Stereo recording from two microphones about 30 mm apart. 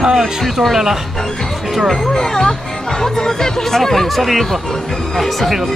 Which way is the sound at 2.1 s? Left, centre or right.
Left.